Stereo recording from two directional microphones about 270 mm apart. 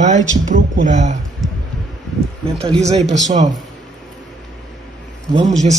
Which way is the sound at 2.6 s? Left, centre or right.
Right.